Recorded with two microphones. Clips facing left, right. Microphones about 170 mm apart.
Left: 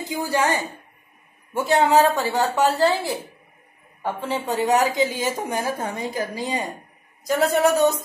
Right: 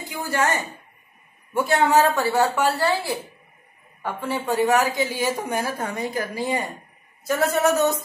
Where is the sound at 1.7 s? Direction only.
15° left (ahead or behind).